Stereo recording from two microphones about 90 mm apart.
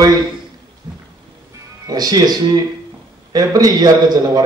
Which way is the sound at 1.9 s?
45° right (ahead or behind).